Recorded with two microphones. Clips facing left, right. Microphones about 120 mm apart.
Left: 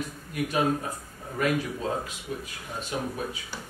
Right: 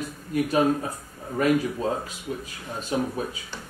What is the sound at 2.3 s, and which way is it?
Speech, 35° right (ahead or behind).